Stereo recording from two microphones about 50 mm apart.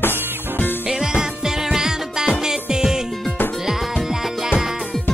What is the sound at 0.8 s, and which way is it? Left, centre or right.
Music, centre.